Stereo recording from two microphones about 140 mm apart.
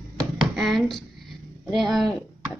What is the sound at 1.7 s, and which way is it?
Speech, centre (ahead or behind).